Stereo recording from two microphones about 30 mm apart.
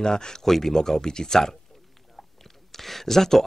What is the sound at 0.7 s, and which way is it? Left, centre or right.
Speech, centre.